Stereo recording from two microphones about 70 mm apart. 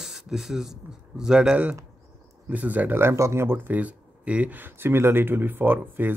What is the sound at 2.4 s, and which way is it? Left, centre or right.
Speech, right.